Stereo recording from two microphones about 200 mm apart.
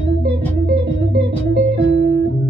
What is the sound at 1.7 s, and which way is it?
Music, 60° right (ahead or behind).